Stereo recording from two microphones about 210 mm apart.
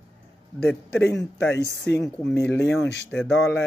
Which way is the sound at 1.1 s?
55° left (ahead or behind).